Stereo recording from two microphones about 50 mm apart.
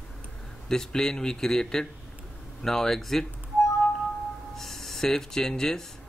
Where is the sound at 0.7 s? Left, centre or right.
Centre.